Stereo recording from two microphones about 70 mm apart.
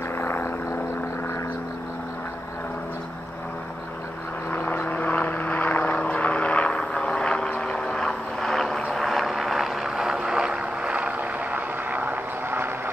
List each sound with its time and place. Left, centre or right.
0.2 s vehicle: left
4.5 s vehicle: left; by 12.9 s right